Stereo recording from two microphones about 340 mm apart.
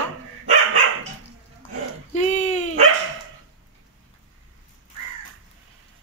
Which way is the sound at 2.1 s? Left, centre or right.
Centre.